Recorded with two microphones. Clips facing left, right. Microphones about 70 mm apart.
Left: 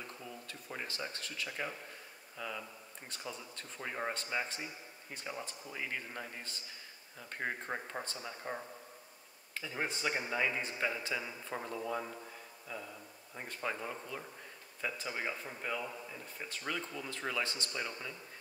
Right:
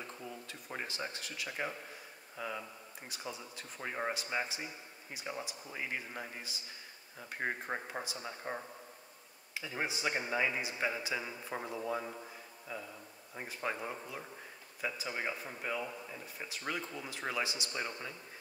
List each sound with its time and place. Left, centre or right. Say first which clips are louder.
0.5 s a man's voice: even; centre
13.3 s a man's voice: right 1 dB; centre